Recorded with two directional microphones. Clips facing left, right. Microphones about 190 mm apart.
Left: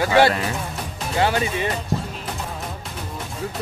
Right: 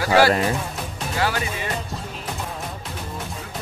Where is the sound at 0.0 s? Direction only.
25° left (ahead or behind).